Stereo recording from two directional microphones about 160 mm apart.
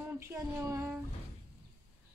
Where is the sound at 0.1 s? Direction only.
15° right (ahead or behind).